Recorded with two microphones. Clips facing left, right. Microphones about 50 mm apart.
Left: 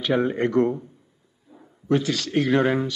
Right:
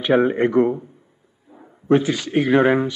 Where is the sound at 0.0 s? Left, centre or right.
Right.